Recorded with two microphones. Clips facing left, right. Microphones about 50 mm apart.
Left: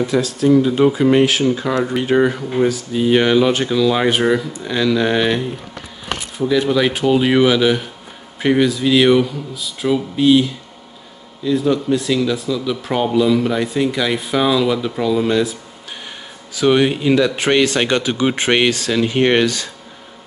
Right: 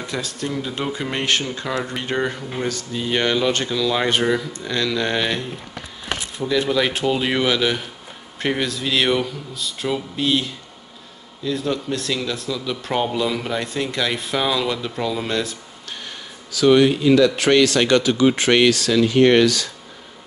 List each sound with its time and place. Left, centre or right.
0.0 s speech: centre
16.5 s speech: left